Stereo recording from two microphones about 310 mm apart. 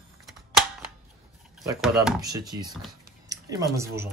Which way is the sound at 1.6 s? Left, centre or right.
Centre.